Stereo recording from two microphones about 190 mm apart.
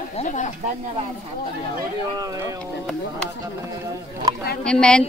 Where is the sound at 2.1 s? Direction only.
20° right (ahead or behind).